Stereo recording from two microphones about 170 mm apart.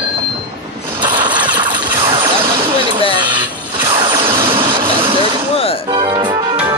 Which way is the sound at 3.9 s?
30° right (ahead or behind).